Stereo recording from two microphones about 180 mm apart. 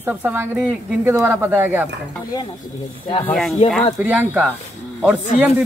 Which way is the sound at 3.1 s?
30° left (ahead or behind).